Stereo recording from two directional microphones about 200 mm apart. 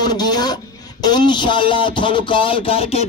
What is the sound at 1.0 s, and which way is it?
A man's voice, 20° left (ahead or behind).